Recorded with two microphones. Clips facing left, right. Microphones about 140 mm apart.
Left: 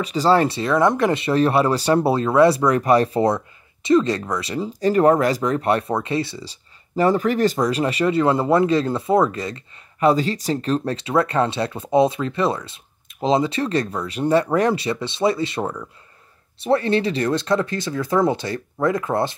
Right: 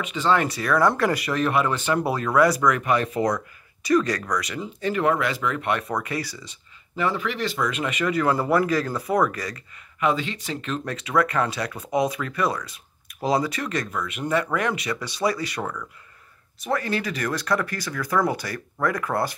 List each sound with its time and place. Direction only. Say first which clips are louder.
0.0 s speech: left 5 dB; 35° left (ahead or behind)